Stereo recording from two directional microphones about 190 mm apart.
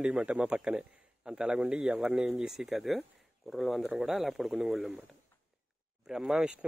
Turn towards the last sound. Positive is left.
turn(degrees=0)  # may be behind; listen again after turning